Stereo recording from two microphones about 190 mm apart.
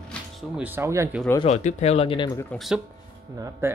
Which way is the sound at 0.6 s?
10° right (ahead or behind).